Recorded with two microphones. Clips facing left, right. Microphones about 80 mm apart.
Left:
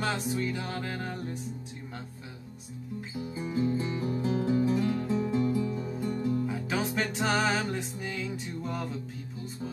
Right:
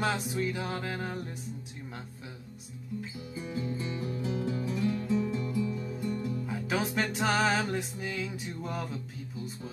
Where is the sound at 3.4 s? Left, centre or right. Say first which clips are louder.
Left 6 dB; left.